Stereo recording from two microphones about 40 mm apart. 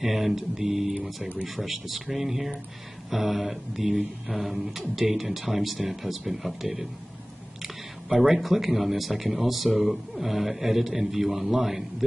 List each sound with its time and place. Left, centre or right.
0.0 s speech: centre